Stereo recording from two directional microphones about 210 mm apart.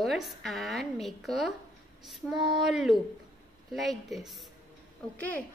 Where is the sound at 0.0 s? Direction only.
Centre (ahead or behind).